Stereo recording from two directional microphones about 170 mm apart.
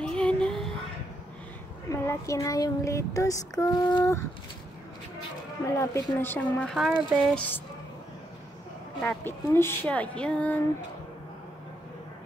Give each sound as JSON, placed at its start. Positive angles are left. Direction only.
{"t": 0.0, "sound": "child singing", "side_deg": 5}
{"t": 1.9, "sound": "child singing", "side_deg": 15}
{"t": 5.7, "sound": "speech", "side_deg": 20}
{"t": 6.7, "sound": "speech", "side_deg": 0}
{"t": 9.0, "sound": "speech", "side_deg": 15}